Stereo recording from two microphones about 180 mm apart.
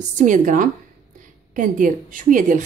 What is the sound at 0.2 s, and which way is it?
A woman's voice, 45° right (ahead or behind).